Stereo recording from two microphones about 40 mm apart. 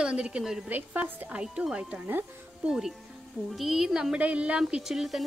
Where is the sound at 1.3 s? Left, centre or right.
Right.